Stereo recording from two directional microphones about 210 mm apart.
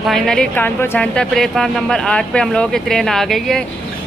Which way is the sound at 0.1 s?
5° left (ahead or behind).